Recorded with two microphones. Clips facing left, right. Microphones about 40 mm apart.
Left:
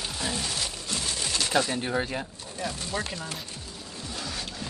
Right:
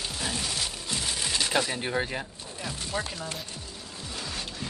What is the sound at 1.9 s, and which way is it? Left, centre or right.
Speech, centre.